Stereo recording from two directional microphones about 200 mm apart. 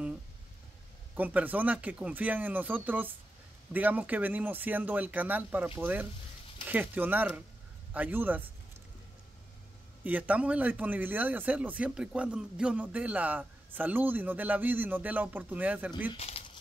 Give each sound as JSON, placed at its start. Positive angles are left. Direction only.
{"t": 1.1, "sound": "speech", "side_deg": -10}
{"t": 10.0, "sound": "speech", "side_deg": -10}
{"t": 16.1, "sound": "a sound", "side_deg": 30}